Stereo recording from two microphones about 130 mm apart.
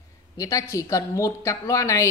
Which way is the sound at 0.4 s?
25° left (ahead or behind).